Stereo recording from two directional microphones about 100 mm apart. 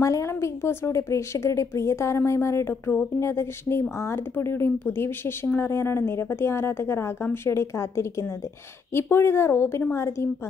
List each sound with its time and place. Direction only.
0.0 s speech: 30° left (ahead or behind)